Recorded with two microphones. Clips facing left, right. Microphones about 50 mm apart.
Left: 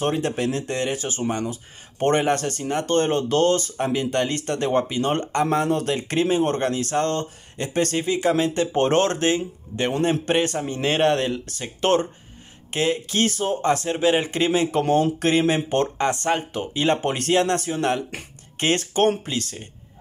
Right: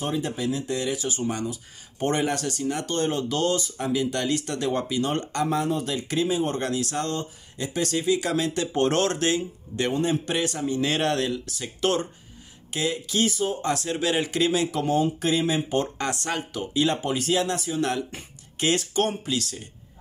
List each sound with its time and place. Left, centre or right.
0.0 s speech: left
9.9 s a man's voice: left
10.2 s speech: left
16.0 s speech: left